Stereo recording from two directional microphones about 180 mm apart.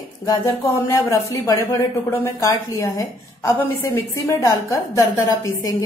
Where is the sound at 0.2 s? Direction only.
20° left (ahead or behind).